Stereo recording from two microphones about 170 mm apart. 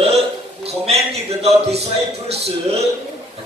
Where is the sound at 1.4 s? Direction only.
40° right (ahead or behind).